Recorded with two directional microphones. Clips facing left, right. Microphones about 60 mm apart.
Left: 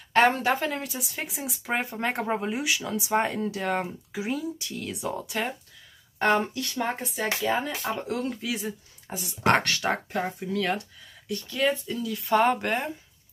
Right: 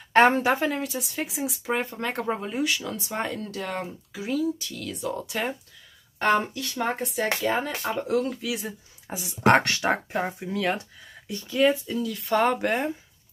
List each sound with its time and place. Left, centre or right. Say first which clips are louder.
0.1 s a woman's voice: right 3 dB; right
0.4 s speech: right 2 dB; centre
0.7 s speech: right 3 dB; centre
2.0 s speech: left 1 dB; centre
5.1 s speech: right 2 dB; centre
9.1 s speech: right 3 dB; centre
11.5 s speech: right 5 dB; centre